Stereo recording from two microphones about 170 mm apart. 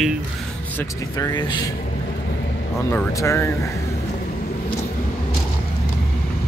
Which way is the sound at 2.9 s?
15° left (ahead or behind).